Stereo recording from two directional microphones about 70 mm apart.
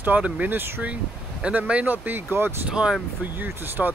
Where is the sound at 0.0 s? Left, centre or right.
Right.